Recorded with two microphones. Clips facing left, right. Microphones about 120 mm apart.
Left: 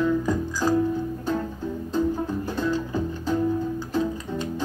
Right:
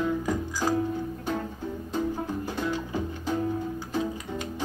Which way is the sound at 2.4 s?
15° right (ahead or behind).